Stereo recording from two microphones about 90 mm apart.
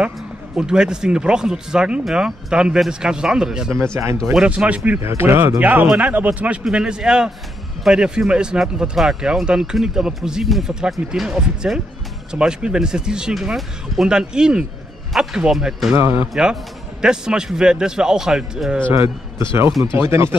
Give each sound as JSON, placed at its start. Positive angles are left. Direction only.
{"t": 0.6, "sound": "speech", "side_deg": -10}
{"t": 3.7, "sound": "speech", "side_deg": -30}
{"t": 4.4, "sound": "speech", "side_deg": -15}
{"t": 5.0, "sound": "speech", "side_deg": -30}
{"t": 5.6, "sound": "speech", "side_deg": -15}
{"t": 15.9, "sound": "speech", "side_deg": -25}
{"t": 17.0, "sound": "speech", "side_deg": -10}
{"t": 20.0, "sound": "speech", "side_deg": -30}